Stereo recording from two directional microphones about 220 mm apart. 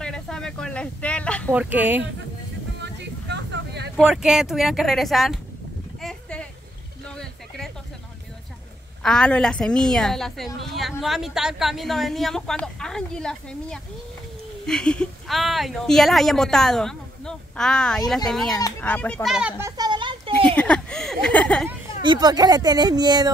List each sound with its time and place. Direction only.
0.0 s a sound: 5° left (ahead or behind)
1.5 s speech: 5° right (ahead or behind)
2.8 s vehicle: 50° right (ahead or behind)
3.9 s a woman's voice: centre (ahead or behind)
5.9 s a sound: centre (ahead or behind)
9.0 s a woman's voice: 5° left (ahead or behind)
19.8 s a sound: 20° right (ahead or behind)
20.5 s speech: 5° left (ahead or behind)
22.0 s speech: 20° right (ahead or behind)